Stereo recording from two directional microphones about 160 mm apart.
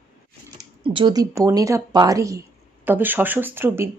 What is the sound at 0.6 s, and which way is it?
Speech, 30° right (ahead or behind).